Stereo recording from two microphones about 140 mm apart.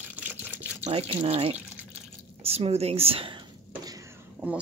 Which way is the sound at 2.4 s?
45° right (ahead or behind).